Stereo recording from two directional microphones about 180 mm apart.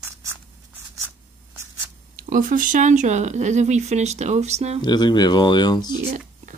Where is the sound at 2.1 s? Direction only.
50° right (ahead or behind).